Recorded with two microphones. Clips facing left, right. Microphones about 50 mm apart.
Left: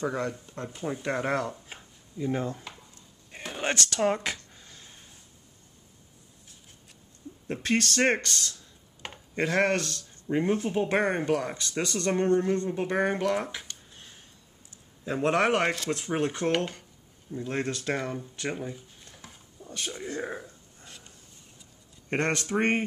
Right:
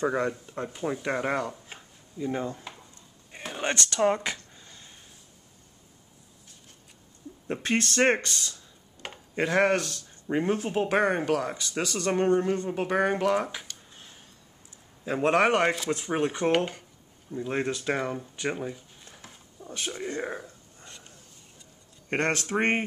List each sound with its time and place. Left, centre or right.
0.1 s speech: centre
3.3 s a sound: centre
7.4 s speech: centre
11.2 s speech: centre
12.1 s speech: centre
15.0 s speech: centre
20.4 s a sound: centre
22.6 s speech: centre